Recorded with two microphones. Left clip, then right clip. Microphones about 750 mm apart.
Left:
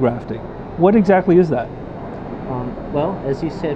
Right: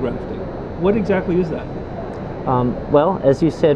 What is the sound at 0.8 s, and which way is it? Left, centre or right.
Speech, left.